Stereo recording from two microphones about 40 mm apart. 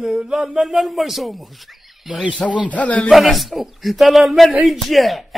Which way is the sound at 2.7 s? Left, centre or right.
Left.